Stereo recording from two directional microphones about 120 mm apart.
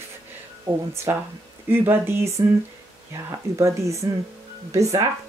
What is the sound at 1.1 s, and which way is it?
Speech, 20° right (ahead or behind).